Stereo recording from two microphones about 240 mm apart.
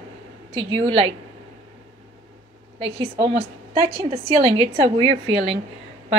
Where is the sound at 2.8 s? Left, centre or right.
Right.